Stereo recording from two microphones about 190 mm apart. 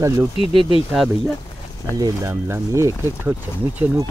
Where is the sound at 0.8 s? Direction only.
Centre (ahead or behind).